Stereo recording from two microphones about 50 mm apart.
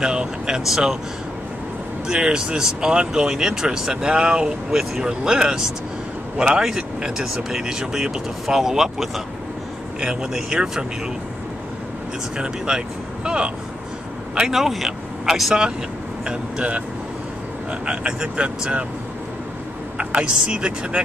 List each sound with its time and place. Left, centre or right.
0.0 s speech: centre
2.0 s speech: centre
12.4 s speech: centre
14.5 s speech: centre
16.3 s speech: right
20.0 s speech: right